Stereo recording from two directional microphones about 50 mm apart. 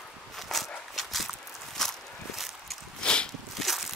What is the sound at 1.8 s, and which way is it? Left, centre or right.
Walk, centre.